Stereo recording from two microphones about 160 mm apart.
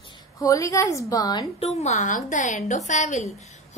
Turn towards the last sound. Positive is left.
turn(degrees=50)  # may be behind; listen again after turning